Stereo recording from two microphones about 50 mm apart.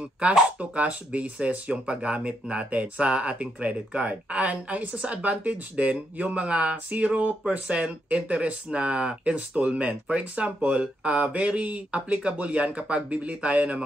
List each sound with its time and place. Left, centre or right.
0.6 s speech: right